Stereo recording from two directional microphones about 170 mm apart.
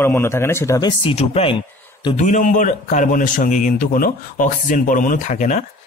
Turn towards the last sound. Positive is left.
turn(degrees=45)  # may be behind; listen again after turning